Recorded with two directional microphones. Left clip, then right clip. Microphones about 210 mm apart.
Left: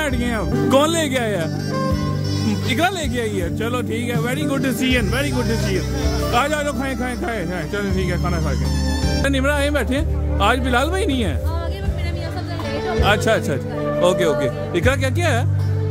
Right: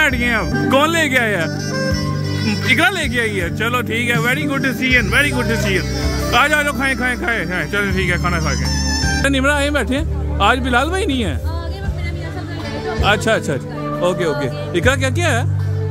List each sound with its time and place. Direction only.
0.0 s speech: 5° left (ahead or behind)
2.6 s speech: 10° left (ahead or behind)
4.4 s speech: 15° left (ahead or behind)
5.1 s speech: 5° left (ahead or behind)
13.0 s speech: 5° right (ahead or behind)